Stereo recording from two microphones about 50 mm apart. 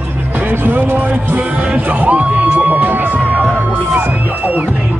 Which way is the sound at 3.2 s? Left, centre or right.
Right.